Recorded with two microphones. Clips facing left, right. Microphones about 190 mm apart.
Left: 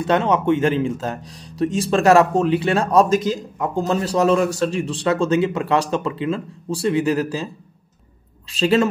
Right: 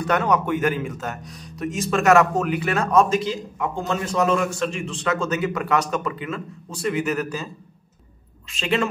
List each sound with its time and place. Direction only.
0.0 s speech: 25° left (ahead or behind)
8.5 s speech: 35° left (ahead or behind)